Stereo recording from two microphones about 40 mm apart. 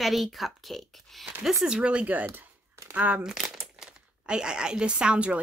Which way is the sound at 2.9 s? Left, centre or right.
Right.